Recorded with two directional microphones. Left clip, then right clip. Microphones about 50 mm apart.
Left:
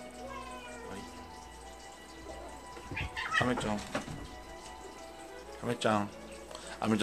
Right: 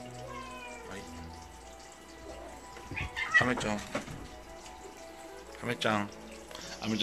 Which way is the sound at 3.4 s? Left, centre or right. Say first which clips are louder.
Right 2 dB; left.